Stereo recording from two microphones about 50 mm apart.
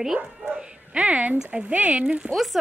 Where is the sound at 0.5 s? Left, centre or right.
Right.